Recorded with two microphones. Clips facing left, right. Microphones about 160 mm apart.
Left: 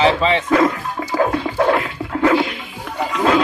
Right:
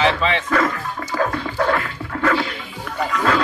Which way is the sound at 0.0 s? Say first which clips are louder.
Left 3 dB; 25° left (ahead or behind).